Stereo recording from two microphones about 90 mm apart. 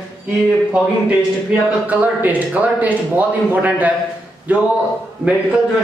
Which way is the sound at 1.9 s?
15° right (ahead or behind).